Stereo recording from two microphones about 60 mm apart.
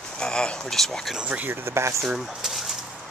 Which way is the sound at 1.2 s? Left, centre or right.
Right.